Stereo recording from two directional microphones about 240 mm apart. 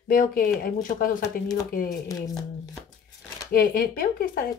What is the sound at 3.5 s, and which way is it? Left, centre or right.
Speech, left.